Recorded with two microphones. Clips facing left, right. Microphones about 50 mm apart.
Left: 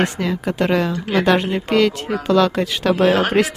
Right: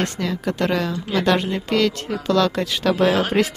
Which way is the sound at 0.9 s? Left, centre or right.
Left.